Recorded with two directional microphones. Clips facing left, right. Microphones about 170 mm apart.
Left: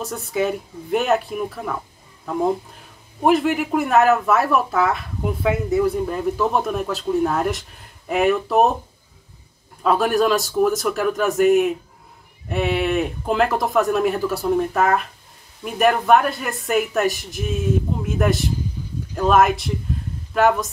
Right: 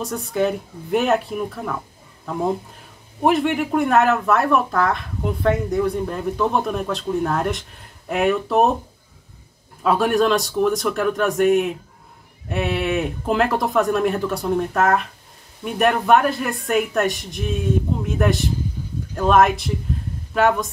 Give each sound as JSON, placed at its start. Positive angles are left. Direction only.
{"t": 0.0, "sound": "speech", "side_deg": 0}
{"t": 3.2, "sound": "speech", "side_deg": 0}
{"t": 9.8, "sound": "speech", "side_deg": 0}